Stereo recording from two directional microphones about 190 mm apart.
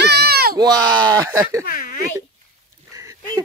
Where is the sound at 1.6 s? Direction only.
45° left (ahead or behind).